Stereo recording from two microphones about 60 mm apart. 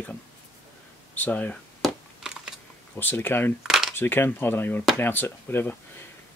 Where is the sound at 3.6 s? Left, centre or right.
Centre.